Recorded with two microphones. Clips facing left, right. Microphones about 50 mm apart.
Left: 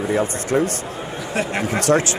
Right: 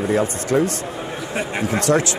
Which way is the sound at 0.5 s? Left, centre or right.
Left.